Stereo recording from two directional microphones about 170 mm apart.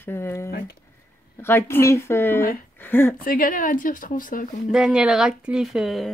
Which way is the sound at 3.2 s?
55° left (ahead or behind).